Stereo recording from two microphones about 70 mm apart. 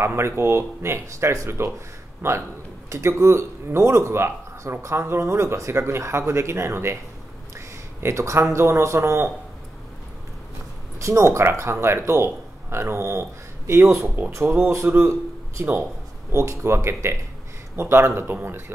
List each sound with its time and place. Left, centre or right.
0.0 s speech: right
11.0 s speech: right